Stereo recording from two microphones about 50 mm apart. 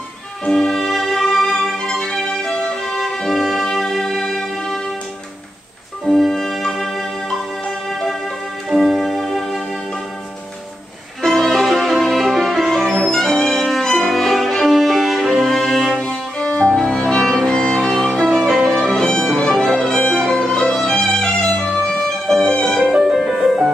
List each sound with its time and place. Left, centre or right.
0.5 s music: centre
6.1 s music: centre
8.6 s music: centre
11.2 s music: centre
16.0 s cello: centre
16.7 s music: centre
19.6 s violin: centre
22.8 s music: centre